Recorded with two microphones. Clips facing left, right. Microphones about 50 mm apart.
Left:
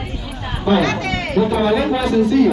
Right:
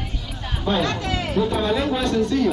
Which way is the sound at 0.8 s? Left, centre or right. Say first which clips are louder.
Left 4 dB; left.